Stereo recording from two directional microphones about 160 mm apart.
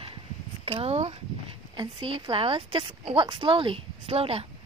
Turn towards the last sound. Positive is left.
turn(degrees=-35)  # may be behind; listen again after turning